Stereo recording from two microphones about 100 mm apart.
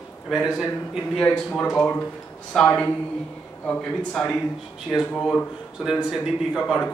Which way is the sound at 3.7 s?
15° left (ahead or behind).